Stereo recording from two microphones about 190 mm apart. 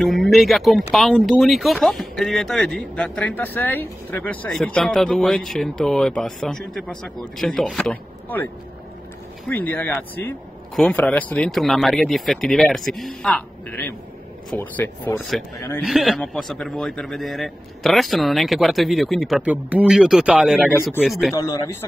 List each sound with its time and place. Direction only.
0.0 s speech: centre (ahead or behind)
9.5 s speech: 10° left (ahead or behind)
15.8 s speech: centre (ahead or behind)
21.4 s speech: 20° left (ahead or behind)